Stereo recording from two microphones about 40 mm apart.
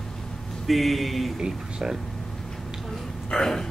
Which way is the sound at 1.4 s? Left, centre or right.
Centre.